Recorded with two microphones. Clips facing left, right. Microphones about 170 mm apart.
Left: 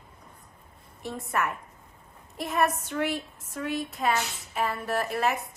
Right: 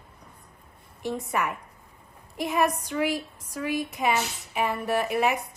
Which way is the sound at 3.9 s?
15° right (ahead or behind).